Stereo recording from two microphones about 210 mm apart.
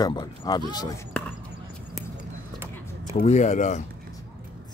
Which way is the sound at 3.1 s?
30° left (ahead or behind).